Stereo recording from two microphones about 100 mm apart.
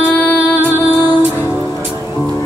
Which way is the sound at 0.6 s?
20° right (ahead or behind).